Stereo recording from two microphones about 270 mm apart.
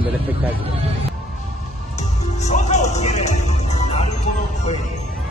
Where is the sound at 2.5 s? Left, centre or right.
Left.